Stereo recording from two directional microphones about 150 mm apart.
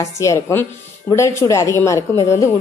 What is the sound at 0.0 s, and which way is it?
A woman's voice, 20° left (ahead or behind).